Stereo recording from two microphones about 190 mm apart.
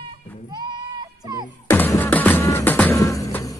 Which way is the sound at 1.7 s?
10° left (ahead or behind).